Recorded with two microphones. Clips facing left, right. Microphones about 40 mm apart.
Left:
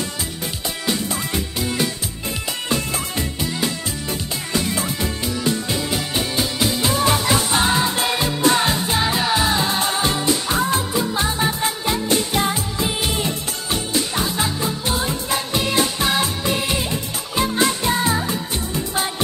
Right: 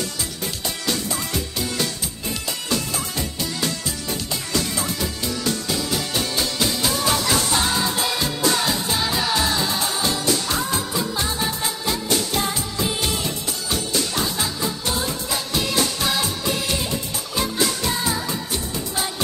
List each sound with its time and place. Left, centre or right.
0.8 s music: centre
4.5 s music: left